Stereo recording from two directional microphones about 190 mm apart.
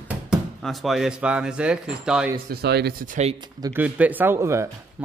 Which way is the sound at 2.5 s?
60° right (ahead or behind).